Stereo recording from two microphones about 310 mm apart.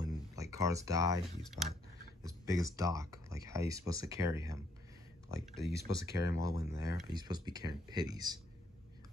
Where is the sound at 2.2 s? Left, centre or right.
Centre.